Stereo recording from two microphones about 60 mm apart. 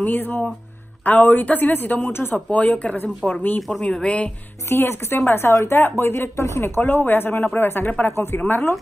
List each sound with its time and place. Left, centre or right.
0.0 s speech: left
2.5 s speech: left
4.6 s speech: left
6.8 s speech: left